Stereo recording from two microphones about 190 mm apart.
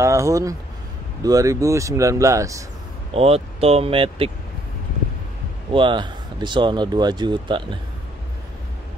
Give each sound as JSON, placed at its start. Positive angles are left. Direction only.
{"t": 0.0, "sound": "speech", "side_deg": -15}
{"t": 3.1, "sound": "speech", "side_deg": -30}
{"t": 5.7, "sound": "speech", "side_deg": -25}